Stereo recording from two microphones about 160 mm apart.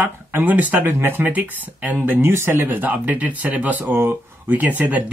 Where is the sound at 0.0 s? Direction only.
10° right (ahead or behind).